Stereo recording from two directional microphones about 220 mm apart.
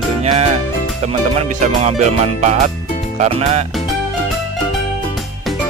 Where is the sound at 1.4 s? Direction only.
30° right (ahead or behind).